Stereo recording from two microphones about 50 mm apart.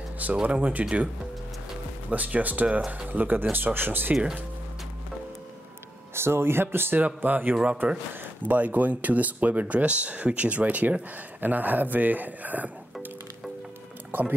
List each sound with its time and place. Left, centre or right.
0.2 s speech: right
2.0 s speech: right
4.1 s speech: right
6.1 s speech: right
7.2 s speech: right
14.1 s speech: right